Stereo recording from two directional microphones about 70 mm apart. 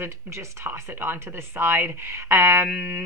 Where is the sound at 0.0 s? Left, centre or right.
Right.